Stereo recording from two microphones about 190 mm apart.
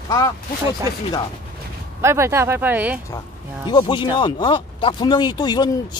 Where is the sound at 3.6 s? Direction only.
25° left (ahead or behind).